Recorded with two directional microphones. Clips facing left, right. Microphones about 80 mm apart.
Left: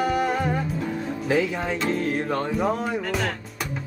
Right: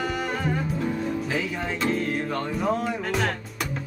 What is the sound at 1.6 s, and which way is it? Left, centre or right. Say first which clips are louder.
Music: left 1 dB; left.